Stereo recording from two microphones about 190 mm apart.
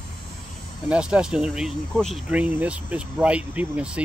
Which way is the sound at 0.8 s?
5° right (ahead or behind).